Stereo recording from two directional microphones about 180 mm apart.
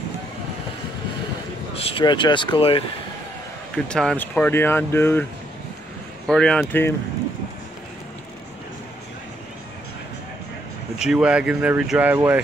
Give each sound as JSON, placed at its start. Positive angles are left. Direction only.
{"t": 1.8, "sound": "speech", "side_deg": 30}
{"t": 3.7, "sound": "speech", "side_deg": 5}
{"t": 6.2, "sound": "speech", "side_deg": 5}
{"t": 11.0, "sound": "speech", "side_deg": -5}